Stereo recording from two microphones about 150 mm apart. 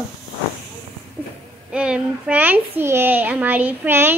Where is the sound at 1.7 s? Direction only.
5° right (ahead or behind).